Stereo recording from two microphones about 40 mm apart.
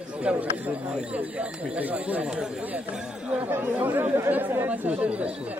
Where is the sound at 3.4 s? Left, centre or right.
Right.